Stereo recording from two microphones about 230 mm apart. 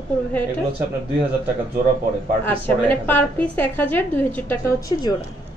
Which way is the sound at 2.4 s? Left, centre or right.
Centre.